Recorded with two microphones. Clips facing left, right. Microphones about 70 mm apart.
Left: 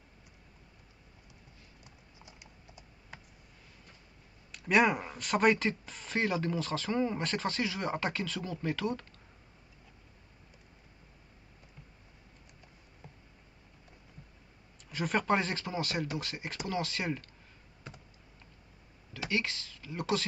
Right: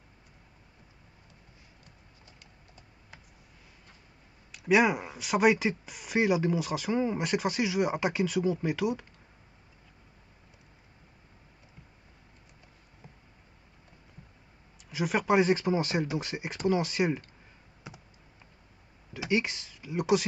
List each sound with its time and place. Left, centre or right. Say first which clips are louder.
1.9 s typing: left 1 dB; centre
4.5 s speech: right 2 dB; centre
13.0 s a sound: even; centre
14.9 s speech: right 3 dB; centre
19.1 s speech: right 5 dB; centre